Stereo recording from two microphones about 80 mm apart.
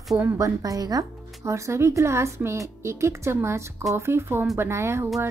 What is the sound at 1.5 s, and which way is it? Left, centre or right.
Speech, right.